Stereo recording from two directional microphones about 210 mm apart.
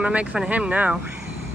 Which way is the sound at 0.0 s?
5° right (ahead or behind).